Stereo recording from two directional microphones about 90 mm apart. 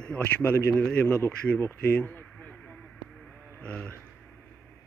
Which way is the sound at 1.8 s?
20° left (ahead or behind).